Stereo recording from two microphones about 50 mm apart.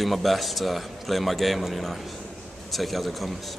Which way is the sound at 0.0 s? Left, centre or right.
Centre.